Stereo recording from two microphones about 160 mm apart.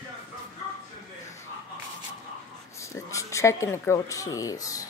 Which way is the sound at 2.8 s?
20° left (ahead or behind).